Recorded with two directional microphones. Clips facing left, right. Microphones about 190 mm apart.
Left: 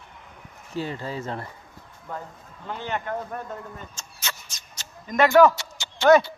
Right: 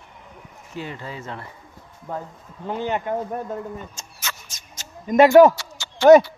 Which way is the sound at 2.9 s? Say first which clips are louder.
Right 5 dB; 20° right (ahead or behind).